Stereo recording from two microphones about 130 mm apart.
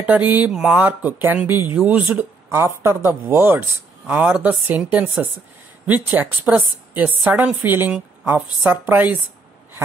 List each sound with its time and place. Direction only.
0.0 s a woman's voice: 10° right (ahead or behind)